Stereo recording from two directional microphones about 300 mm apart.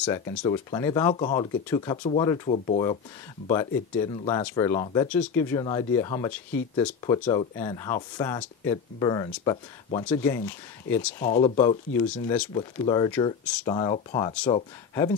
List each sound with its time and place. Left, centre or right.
0.0 s speech: centre
4.0 s speech: centre
11.3 s speech: centre